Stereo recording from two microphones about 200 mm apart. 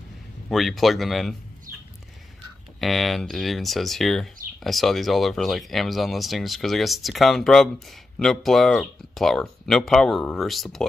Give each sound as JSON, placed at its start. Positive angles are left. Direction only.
{"t": 0.5, "sound": "speech", "side_deg": 0}
{"t": 1.7, "sound": "horse", "side_deg": -45}
{"t": 2.8, "sound": "speech", "side_deg": 0}